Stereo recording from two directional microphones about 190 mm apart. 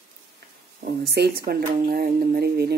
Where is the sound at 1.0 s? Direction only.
60° right (ahead or behind).